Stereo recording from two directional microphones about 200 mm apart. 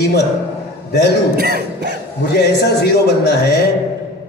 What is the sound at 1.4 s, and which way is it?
Cough, 55° right (ahead or behind).